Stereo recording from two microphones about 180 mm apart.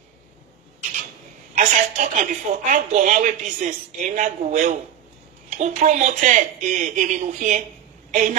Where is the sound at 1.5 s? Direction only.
40° right (ahead or behind).